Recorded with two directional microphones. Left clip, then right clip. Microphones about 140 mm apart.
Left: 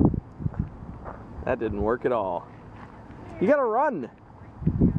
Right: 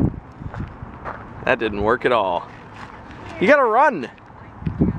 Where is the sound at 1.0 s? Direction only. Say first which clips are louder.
Right 8 dB; 20° right (ahead or behind).